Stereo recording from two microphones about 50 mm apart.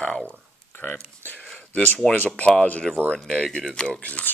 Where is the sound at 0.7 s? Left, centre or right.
Left.